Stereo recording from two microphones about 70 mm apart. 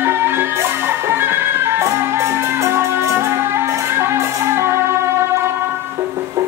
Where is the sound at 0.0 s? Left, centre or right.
Right.